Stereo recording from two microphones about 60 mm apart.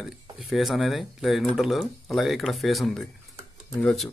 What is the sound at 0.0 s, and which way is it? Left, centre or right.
Speech, centre.